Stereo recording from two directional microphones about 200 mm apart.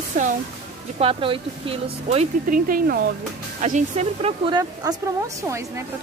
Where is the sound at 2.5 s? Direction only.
45° right (ahead or behind).